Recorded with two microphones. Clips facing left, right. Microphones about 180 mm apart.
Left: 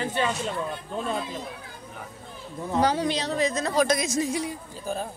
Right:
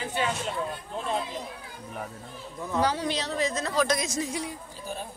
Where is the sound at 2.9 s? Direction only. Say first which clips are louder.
Left 3 dB; 15° left (ahead or behind).